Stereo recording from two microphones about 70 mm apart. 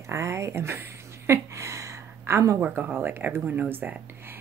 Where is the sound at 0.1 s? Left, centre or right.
Right.